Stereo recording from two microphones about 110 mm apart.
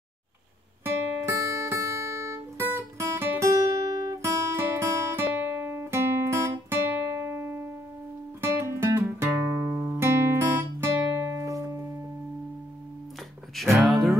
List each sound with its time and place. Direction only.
0.8 s music: 25° right (ahead or behind)
3.0 s guitar: 20° right (ahead or behind)
8.4 s music: 25° right (ahead or behind)
9.3 s guitar: 20° right (ahead or behind)
13.6 s music: centre (ahead or behind)